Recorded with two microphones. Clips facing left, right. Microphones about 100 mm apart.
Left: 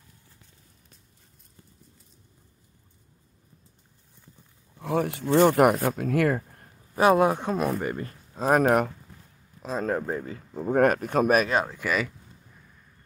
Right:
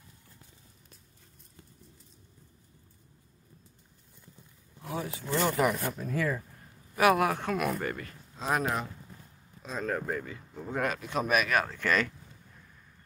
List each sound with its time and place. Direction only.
4.8 s speech: 70° left (ahead or behind); by 6.7 s 55° left (ahead or behind)
7.0 s speech: 25° left (ahead or behind)
8.4 s speech: 50° left (ahead or behind)
9.6 s speech: 30° left (ahead or behind)
10.6 s speech: 50° left (ahead or behind)
11.4 s speech: 20° left (ahead or behind)